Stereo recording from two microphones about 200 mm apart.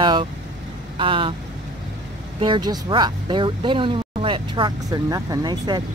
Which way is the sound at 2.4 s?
20° right (ahead or behind).